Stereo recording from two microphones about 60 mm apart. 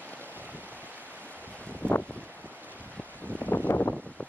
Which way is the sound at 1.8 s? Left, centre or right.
Right.